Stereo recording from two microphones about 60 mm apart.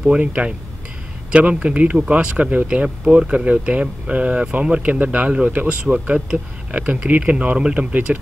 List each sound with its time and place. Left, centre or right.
0.2 s speech: centre